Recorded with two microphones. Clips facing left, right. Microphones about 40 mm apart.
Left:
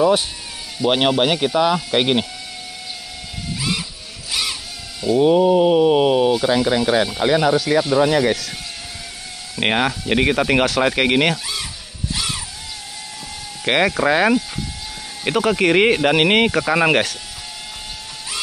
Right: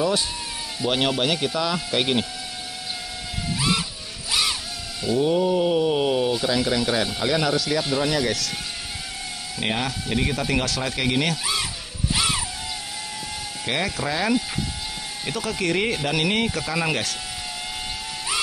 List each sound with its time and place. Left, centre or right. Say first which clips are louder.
0.0 s mantra: left 7 dB; left
4.3 s music: even; centre
5.2 s mantra: left 7 dB; left
9.6 s speech: left 7 dB; left
12.1 s music: right 2 dB; centre
13.7 s speech: left 9 dB; left